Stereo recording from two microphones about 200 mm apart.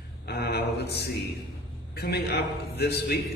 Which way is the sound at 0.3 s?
55° left (ahead or behind).